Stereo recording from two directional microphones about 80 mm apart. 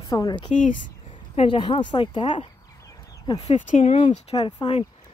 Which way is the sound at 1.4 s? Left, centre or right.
Left.